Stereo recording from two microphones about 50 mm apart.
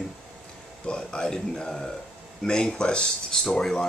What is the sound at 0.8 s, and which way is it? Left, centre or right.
Speech, centre.